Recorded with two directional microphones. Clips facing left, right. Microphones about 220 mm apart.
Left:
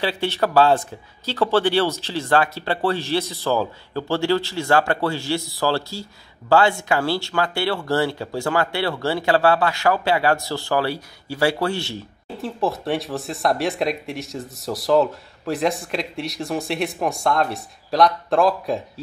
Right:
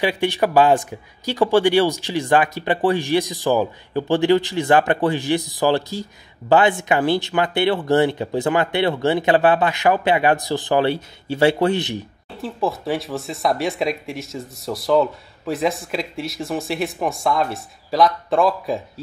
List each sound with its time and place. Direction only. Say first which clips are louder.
0.0 s a man's voice: right 3 dB; 15° right (ahead or behind)
12.4 s speech: even; centre (ahead or behind)